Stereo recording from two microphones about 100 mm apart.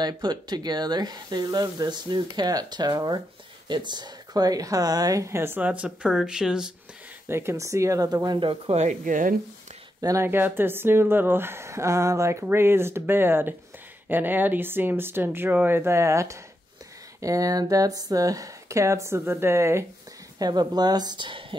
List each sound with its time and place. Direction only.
0.0 s speech: 45° right (ahead or behind); by 6.7 s 5° right (ahead or behind)
7.2 s speech: 25° right (ahead or behind)
8.4 s speech: 65° right (ahead or behind)
10.0 s speech: 25° right (ahead or behind)
20.3 s speech: 45° right (ahead or behind); by 21.5 s 60° right (ahead or behind)